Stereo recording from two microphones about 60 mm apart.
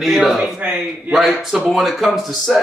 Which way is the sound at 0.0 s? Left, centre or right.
Centre.